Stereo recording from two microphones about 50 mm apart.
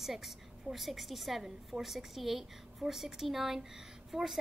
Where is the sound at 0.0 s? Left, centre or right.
Centre.